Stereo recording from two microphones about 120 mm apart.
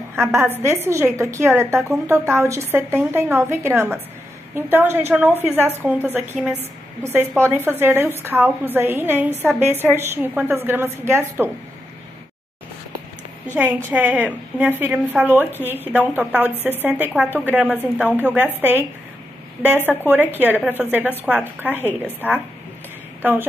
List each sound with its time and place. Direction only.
0.1 s a woman's voice: 20° right (ahead or behind)
13.8 s a woman's voice: 15° right (ahead or behind)